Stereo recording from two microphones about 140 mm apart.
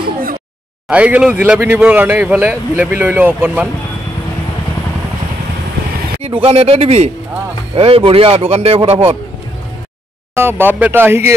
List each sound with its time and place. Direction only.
0.0 s a sound: 90° right
0.8 s speech: 10° right (ahead or behind)
6.2 s speech: 45° right (ahead or behind)
10.3 s speech: 15° right (ahead or behind)